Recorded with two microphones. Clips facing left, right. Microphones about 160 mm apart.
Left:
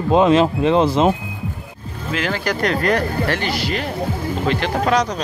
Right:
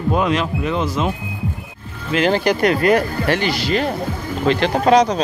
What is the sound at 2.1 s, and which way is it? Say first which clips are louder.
Speech: right 6 dB; 25° right (ahead or behind).